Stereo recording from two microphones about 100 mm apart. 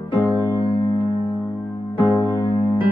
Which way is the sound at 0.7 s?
55° left (ahead or behind).